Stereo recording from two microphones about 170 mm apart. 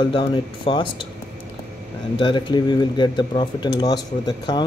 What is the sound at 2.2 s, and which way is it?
Speech, 25° left (ahead or behind).